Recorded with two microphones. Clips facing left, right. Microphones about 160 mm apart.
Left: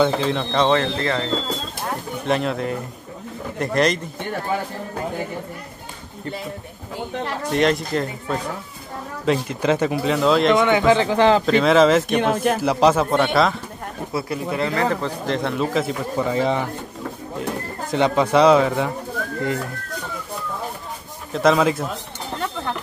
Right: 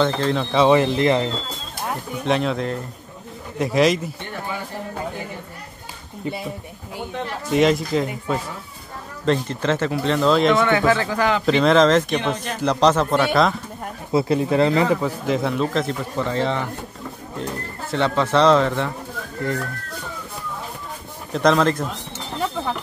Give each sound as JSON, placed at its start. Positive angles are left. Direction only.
{"t": 0.0, "sound": "speech", "side_deg": 5}
{"t": 2.2, "sound": "speech", "side_deg": 0}
{"t": 7.5, "sound": "speech", "side_deg": 0}
{"t": 9.2, "sound": "speech", "side_deg": 10}
{"t": 10.1, "sound": "speech", "side_deg": 0}
{"t": 10.6, "sound": "speech", "side_deg": 20}
{"t": 11.4, "sound": "speech", "side_deg": 0}
{"t": 14.1, "sound": "speech", "side_deg": -30}
{"t": 14.8, "sound": "speech", "side_deg": -10}
{"t": 17.9, "sound": "speech", "side_deg": 15}
{"t": 21.3, "sound": "speech", "side_deg": 5}